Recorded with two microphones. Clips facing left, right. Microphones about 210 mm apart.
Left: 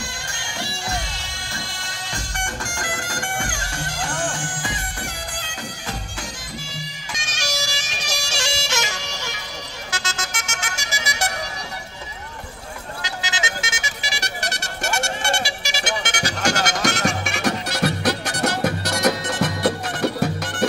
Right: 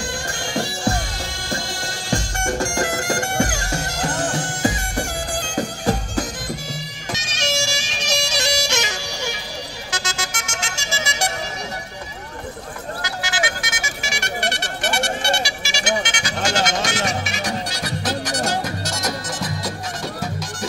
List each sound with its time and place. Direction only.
2.0 s music: 45° right (ahead or behind)
7.3 s music: 25° right (ahead or behind)
8.1 s bagpipes: 20° right (ahead or behind)
9.8 s vehicle: 15° right (ahead or behind)
10.6 s vehicle: 25° right (ahead or behind)
13.0 s vehicle: 20° left (ahead or behind); by 16.3 s 45° left (ahead or behind)
16.4 s music: 45° left (ahead or behind)
17.3 s music: 65° left (ahead or behind)